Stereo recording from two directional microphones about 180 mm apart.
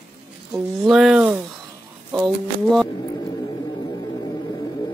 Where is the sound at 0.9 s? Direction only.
5° right (ahead or behind).